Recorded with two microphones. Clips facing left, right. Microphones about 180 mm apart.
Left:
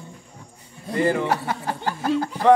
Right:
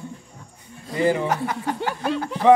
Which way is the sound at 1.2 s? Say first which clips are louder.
Even; 30° left (ahead or behind).